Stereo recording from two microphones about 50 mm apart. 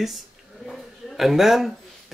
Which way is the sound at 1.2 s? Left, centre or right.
Centre.